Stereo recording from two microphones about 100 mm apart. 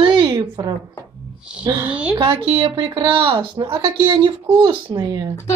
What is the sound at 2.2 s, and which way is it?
Speech, 65° right (ahead or behind).